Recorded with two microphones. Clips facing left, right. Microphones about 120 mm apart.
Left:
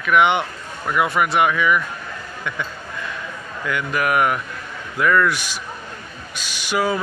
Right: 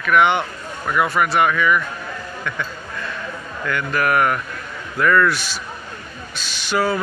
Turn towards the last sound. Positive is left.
turn(degrees=10)  # may be behind; listen again after turning